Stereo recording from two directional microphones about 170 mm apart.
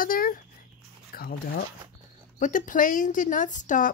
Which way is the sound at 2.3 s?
50° left (ahead or behind).